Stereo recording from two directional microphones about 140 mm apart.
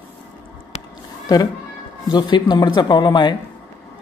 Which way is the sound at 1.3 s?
30° left (ahead or behind).